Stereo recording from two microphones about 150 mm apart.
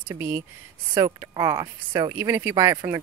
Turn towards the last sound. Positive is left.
turn(degrees=-20)  # may be behind; listen again after turning